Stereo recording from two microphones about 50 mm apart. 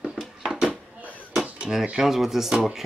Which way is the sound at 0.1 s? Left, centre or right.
Centre.